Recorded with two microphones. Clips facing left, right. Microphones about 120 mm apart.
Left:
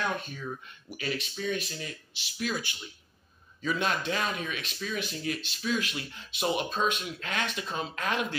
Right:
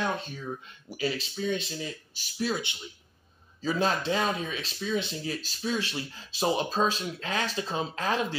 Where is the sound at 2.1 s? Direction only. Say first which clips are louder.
Right 3 dB; 35° right (ahead or behind).